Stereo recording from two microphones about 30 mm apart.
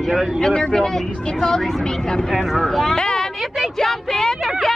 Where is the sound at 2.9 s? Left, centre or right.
Left.